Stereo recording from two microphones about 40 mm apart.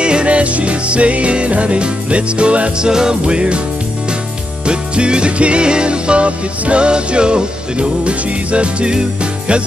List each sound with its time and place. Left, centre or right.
0.0 s music: right
2.9 s music: centre
4.6 s music: right